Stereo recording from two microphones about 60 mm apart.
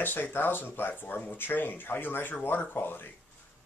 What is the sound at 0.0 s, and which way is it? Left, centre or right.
Speech, left.